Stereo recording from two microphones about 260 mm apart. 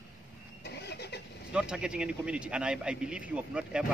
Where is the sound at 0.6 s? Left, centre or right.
Left.